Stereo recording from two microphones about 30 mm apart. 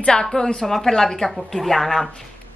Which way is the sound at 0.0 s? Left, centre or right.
Left.